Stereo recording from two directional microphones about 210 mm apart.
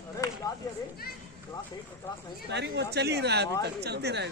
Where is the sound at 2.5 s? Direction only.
55° right (ahead or behind).